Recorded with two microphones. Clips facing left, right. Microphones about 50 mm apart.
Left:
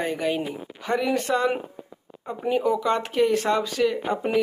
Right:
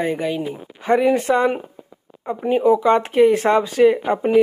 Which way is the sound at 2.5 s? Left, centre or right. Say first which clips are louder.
Right 7 dB; right.